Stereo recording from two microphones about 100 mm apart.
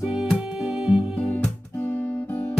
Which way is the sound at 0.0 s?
5° right (ahead or behind).